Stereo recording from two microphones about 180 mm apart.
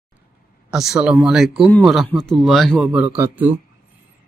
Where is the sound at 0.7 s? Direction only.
5° right (ahead or behind).